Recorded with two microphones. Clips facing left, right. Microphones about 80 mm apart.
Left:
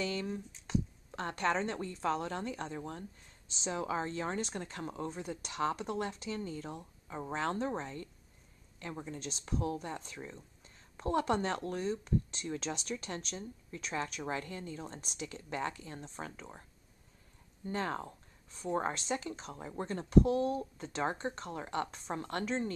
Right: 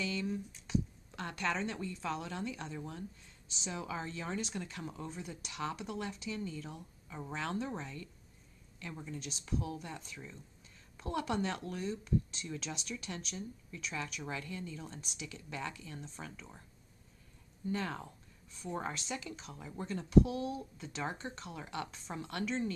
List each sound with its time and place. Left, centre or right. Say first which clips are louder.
0.0 s a woman's voice: left 1 dB; left
17.6 s a woman's voice: left 2 dB; left